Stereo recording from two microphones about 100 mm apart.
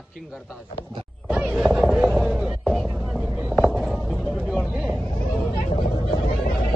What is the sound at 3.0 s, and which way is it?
Vehicle, 5° right (ahead or behind).